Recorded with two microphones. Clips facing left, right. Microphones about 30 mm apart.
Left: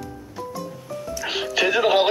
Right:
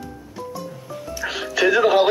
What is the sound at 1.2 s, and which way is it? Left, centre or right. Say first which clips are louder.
Music: right 1 dB; centre.